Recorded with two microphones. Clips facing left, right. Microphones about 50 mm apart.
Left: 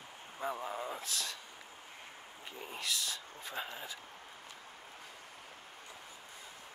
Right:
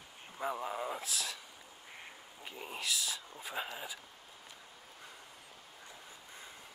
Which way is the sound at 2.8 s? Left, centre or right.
Centre.